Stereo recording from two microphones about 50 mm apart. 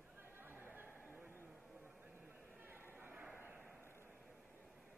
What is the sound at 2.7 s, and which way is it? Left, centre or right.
Chatter, right.